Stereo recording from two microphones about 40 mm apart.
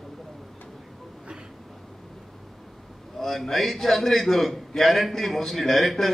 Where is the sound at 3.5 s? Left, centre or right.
Centre.